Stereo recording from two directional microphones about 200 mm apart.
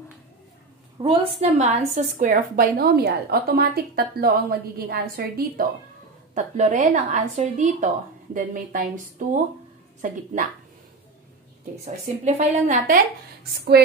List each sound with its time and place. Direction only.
0.9 s a woman's voice: 30° right (ahead or behind); by 5.7 s 50° right (ahead or behind)
6.3 s a woman's voice: 35° right (ahead or behind)
11.8 s a woman's voice: 35° right (ahead or behind)